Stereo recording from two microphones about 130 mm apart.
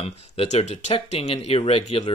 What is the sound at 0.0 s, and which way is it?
Speech, 50° left (ahead or behind).